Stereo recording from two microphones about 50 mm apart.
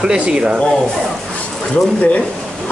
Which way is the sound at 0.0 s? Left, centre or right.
Centre.